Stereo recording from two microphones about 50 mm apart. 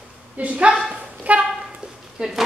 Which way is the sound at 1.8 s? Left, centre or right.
Centre.